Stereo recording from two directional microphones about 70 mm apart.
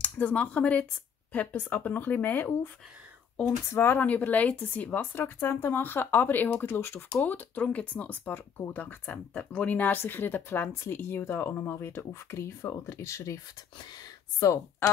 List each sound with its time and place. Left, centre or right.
0.0 s speech: centre
3.7 s speech: left
4.1 s speech: left
5.2 s speech: left
7.2 s speech: left
14.4 s speech: left